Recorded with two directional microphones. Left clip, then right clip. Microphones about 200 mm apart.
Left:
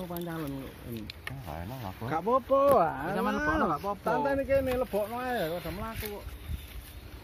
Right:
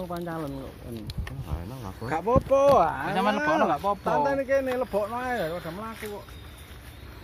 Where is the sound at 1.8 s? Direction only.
45° left (ahead or behind).